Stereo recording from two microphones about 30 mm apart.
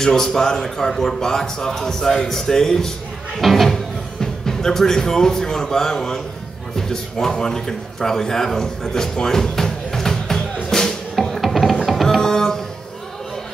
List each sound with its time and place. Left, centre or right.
0.0 s a man's voice: centre
3.3 s speech: centre
4.2 s a man's voice: centre
11.3 s music: centre
11.9 s tabla: centre
12.2 s music: centre